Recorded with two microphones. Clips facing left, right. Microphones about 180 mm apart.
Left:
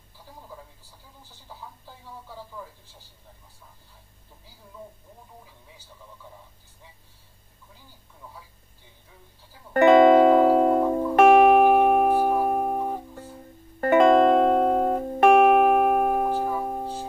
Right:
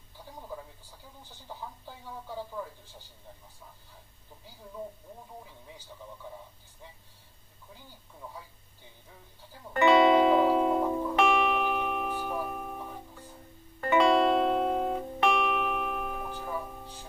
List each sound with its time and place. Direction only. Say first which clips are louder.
9.8 s music: left 7 dB; 50° left (ahead or behind)